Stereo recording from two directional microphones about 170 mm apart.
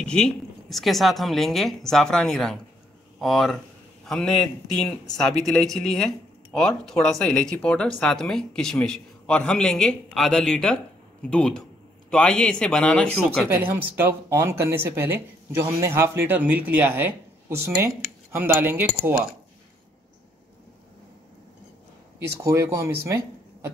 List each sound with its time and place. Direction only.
0.0 s speech: 5° left (ahead or behind)
13.7 s speech: 10° right (ahead or behind)
22.2 s speech: 15° right (ahead or behind)
23.0 s a sound: 15° right (ahead or behind)